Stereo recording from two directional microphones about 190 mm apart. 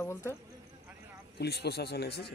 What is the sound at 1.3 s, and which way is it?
Speech, 60° left (ahead or behind).